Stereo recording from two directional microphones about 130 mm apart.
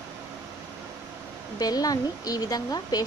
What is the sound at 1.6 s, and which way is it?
Speech, 30° left (ahead or behind).